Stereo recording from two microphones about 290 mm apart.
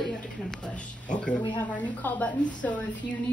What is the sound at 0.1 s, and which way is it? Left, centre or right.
Speech, centre.